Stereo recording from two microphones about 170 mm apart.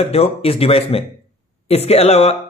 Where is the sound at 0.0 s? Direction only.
35° left (ahead or behind).